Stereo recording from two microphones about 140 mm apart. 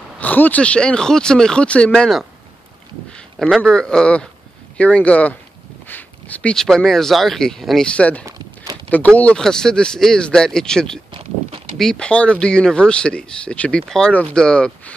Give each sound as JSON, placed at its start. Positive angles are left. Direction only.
{"t": 0.2, "sound": "speech", "side_deg": 10}
{"t": 11.1, "sound": "a sound", "side_deg": -45}
{"t": 11.8, "sound": "speech", "side_deg": 5}